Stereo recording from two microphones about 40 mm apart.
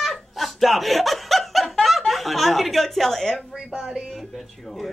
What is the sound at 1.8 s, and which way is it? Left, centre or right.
Speech, centre.